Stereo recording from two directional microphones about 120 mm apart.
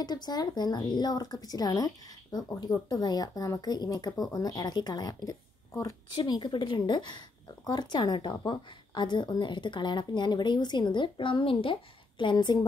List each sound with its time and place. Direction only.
0.0 s speech: 35° left (ahead or behind)
6.1 s speech: 35° left (ahead or behind)